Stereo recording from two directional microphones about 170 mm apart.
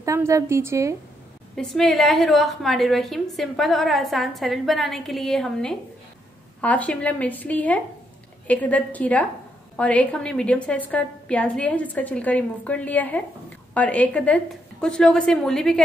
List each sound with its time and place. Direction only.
0.0 s a woman's voice: 15° right (ahead or behind)
1.5 s a woman's voice: centre (ahead or behind)